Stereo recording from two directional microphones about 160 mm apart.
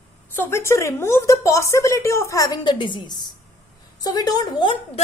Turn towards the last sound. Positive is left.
turn(degrees=30)  # may be behind; listen again after turning